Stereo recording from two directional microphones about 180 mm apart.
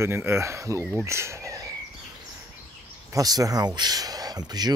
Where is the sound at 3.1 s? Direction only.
20° right (ahead or behind).